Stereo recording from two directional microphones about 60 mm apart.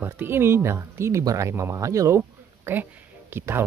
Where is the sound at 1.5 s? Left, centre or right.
Right.